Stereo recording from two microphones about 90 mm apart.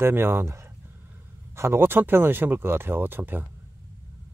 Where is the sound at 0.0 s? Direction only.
25° right (ahead or behind).